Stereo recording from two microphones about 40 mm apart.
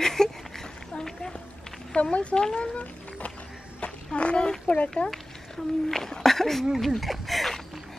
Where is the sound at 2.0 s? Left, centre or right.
Left.